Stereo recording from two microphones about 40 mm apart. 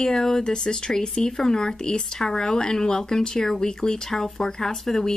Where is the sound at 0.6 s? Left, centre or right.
Centre.